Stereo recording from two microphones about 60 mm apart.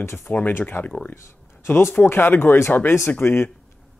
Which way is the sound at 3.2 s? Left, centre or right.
Left.